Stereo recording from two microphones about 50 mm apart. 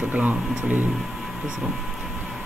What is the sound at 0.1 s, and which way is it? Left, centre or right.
Speech, right.